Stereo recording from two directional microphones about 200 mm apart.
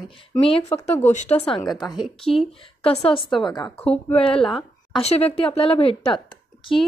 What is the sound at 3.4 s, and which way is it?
A woman's voice, 20° left (ahead or behind).